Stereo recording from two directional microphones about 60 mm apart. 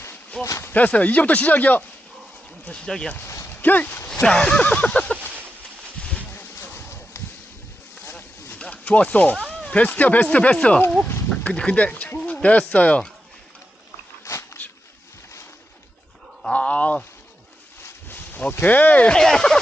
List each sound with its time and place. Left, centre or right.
0.4 s speech: left
0.7 s speech: left
3.4 s speech: left
4.1 s speech: centre
5.9 s a sound: left
6.3 s a sound: left
8.5 s speech: centre
14.2 s biting: left
16.5 s a sound: left
18.0 s speech: left
19.1 s speech: centre